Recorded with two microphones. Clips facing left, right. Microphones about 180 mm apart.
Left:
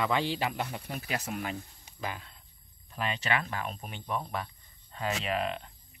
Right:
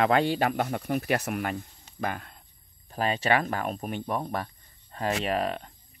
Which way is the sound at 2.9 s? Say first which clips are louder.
Right 7 dB; 40° right (ahead or behind).